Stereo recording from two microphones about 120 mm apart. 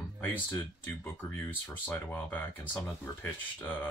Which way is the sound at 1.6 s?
15° left (ahead or behind).